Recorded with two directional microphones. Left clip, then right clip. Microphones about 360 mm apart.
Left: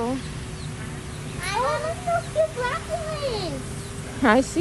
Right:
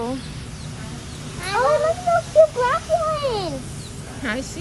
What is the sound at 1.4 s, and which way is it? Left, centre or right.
Cat, centre.